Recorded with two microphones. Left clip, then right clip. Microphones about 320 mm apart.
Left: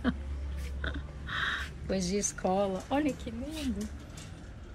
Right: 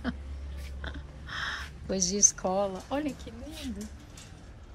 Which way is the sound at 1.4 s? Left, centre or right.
Centre.